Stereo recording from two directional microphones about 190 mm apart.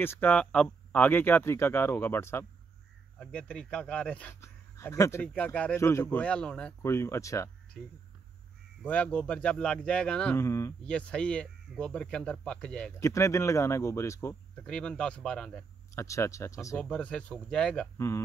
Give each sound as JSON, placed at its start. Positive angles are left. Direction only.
{"t": 0.0, "sound": "a man's voice", "side_deg": 10}
{"t": 8.8, "sound": "a man's voice", "side_deg": 10}
{"t": 15.9, "sound": "a man's voice", "side_deg": 15}
{"t": 16.9, "sound": "speech", "side_deg": 5}